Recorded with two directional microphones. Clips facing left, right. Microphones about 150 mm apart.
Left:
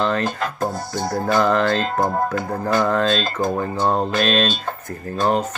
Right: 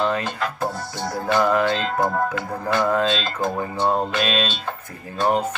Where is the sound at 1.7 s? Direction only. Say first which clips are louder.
Left 2 dB; 40° left (ahead or behind).